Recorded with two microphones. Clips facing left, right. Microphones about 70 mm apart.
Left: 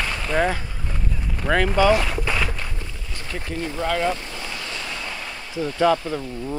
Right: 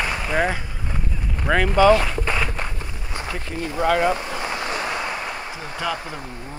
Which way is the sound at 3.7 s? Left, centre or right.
Right.